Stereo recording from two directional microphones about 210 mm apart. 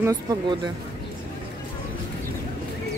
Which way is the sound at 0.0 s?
20° right (ahead or behind).